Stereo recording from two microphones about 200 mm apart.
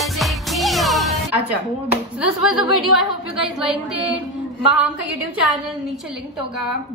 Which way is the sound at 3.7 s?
Centre (ahead or behind).